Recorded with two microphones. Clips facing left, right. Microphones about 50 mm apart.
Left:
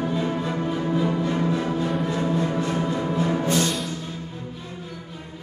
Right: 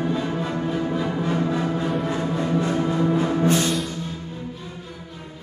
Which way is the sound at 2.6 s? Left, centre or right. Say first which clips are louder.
Right 3 dB; right.